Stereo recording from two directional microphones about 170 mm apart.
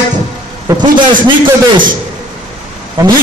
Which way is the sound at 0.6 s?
25° right (ahead or behind).